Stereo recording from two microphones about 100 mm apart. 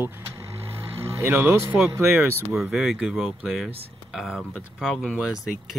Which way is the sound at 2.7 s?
5° right (ahead or behind).